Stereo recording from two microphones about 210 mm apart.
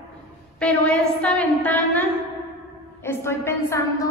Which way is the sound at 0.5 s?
5° left (ahead or behind).